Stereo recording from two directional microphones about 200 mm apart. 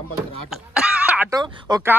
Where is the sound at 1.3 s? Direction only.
20° right (ahead or behind).